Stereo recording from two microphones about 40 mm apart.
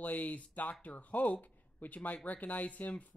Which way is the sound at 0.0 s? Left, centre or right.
Left.